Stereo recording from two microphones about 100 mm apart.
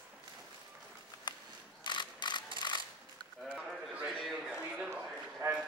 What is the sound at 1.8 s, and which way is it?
Camera, 50° left (ahead or behind).